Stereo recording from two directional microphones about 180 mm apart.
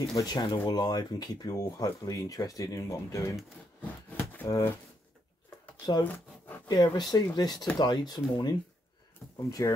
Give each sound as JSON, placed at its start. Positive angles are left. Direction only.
{"t": 0.1, "sound": "speech", "side_deg": 20}
{"t": 4.4, "sound": "speech", "side_deg": 15}
{"t": 6.0, "sound": "zipper", "side_deg": 10}
{"t": 6.7, "sound": "speech", "side_deg": 20}